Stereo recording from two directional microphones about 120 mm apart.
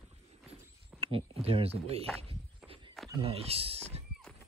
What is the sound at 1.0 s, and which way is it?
Speech, 50° right (ahead or behind).